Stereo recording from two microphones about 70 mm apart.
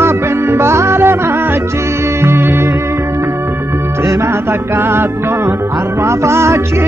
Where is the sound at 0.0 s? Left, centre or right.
Right.